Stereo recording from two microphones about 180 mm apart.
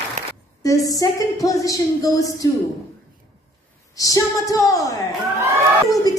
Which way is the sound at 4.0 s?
20° left (ahead or behind).